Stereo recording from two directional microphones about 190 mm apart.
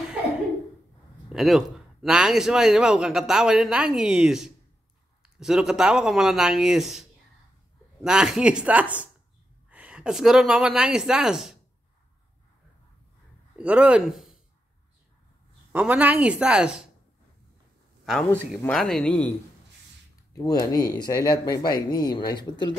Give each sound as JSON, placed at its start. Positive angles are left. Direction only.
{"t": 1.3, "sound": "a man's voice", "side_deg": 0}
{"t": 13.6, "sound": "speech", "side_deg": -5}
{"t": 15.7, "sound": "a man's voice", "side_deg": -5}
{"t": 18.0, "sound": "a man's voice", "side_deg": 0}
{"t": 20.3, "sound": "speech", "side_deg": 20}